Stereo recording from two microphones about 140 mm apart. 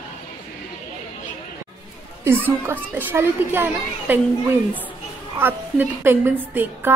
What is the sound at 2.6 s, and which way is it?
A woman's voice, 15° right (ahead or behind).